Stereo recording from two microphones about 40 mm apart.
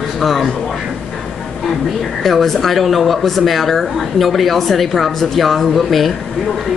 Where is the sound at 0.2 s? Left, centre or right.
Centre.